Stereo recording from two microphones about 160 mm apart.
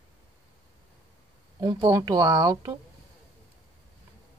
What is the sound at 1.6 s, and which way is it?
Speech, 25° right (ahead or behind).